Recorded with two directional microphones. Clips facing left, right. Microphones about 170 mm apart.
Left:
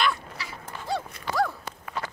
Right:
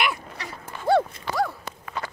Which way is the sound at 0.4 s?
60° right (ahead or behind).